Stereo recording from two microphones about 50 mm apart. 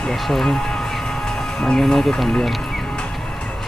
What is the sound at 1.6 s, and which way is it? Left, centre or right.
Speech, centre.